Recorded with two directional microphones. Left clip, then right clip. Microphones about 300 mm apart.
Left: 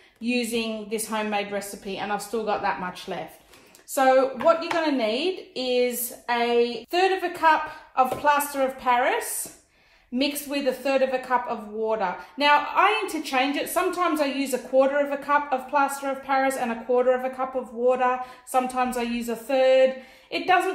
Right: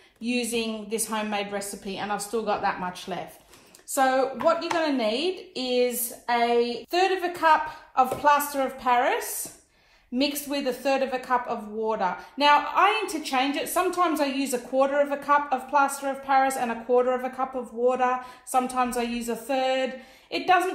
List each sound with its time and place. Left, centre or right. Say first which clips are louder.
0.3 s a woman's voice: left 1 dB; centre